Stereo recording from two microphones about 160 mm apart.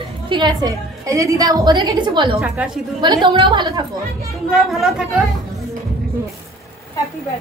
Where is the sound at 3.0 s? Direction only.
30° right (ahead or behind).